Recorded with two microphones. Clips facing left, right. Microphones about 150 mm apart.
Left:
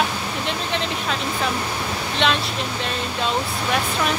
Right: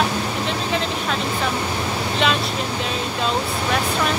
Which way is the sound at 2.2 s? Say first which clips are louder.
Even; 5° right (ahead or behind).